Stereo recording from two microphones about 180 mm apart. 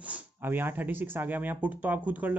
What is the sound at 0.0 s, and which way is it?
Speech, 10° right (ahead or behind).